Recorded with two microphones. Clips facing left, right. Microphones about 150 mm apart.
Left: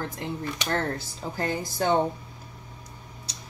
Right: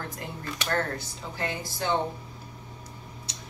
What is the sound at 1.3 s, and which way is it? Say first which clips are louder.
Speech: left 4 dB; 40° left (ahead or behind).